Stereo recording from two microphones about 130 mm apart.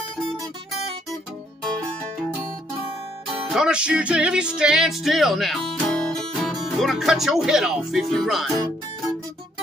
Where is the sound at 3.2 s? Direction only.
5° right (ahead or behind).